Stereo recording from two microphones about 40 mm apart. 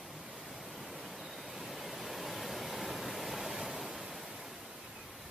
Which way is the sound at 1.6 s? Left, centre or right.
Centre.